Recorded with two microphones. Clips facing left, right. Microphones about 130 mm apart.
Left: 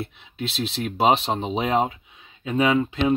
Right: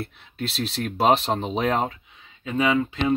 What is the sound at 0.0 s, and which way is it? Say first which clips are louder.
Speech: even; centre (ahead or behind).